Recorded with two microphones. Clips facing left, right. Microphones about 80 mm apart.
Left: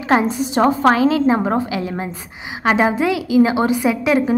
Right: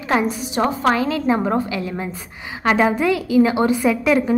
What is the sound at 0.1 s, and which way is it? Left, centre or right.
A woman's voice, left.